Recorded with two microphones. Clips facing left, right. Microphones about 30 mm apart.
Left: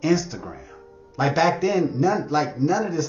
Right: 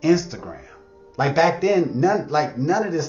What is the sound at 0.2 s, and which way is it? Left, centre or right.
A man's voice, centre.